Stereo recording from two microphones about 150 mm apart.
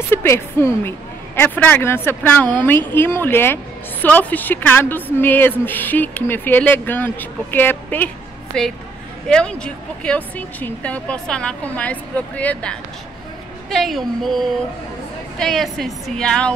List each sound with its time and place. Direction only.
0.1 s a woman's voice: 15° left (ahead or behind)